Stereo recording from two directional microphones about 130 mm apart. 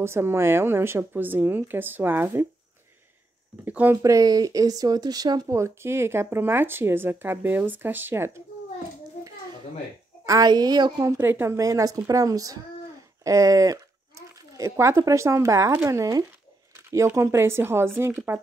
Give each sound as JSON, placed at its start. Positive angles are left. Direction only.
{"t": 0.0, "sound": "a woman's voice", "side_deg": -20}
{"t": 3.6, "sound": "a woman's voice", "side_deg": -15}
{"t": 4.0, "sound": "speech", "side_deg": -25}
{"t": 10.2, "sound": "speech", "side_deg": -30}